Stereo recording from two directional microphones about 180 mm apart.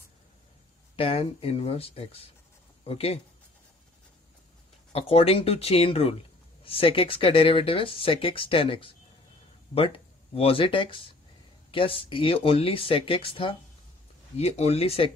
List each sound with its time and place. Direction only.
0.9 s speech: 30° left (ahead or behind)
4.9 s speech: 35° left (ahead or behind)